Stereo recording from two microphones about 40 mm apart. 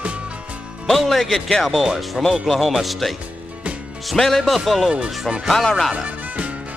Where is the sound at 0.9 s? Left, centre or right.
Centre.